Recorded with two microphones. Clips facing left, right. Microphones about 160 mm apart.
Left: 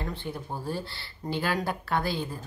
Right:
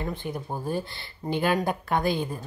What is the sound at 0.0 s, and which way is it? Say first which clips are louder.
Speech: right 3 dB; 15° right (ahead or behind).